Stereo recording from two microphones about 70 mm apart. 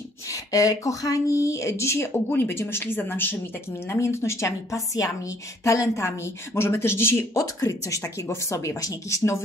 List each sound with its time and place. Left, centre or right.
0.3 s speech: left
4.0 s speech: left
7.3 s speech: left